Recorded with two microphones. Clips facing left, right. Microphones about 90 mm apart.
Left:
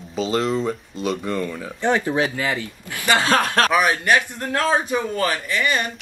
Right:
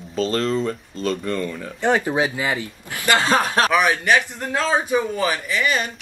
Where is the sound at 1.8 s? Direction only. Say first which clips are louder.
Right 1 dB; 20° right (ahead or behind).